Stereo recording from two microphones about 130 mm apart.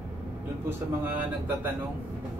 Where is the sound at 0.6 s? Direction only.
15° right (ahead or behind).